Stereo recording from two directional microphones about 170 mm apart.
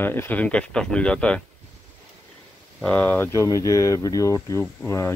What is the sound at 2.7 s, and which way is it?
Speech, 10° left (ahead or behind).